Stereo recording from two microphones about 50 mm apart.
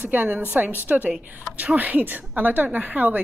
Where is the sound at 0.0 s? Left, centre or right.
Right.